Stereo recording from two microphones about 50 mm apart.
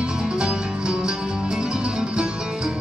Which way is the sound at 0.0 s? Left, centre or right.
Centre.